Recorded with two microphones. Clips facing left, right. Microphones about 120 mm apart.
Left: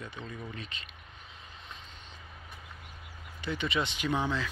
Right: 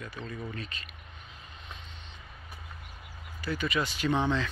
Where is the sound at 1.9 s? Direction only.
45° left (ahead or behind).